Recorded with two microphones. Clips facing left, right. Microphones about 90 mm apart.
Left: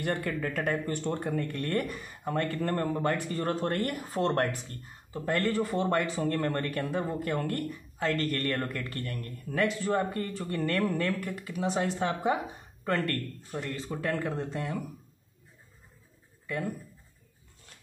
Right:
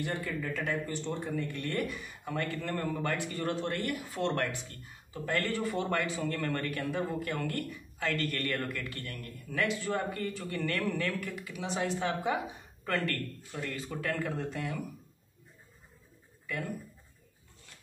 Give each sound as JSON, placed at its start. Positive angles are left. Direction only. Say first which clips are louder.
{"t": 0.0, "sound": "a man's voice", "louder": "left 4 dB", "side_deg": 55}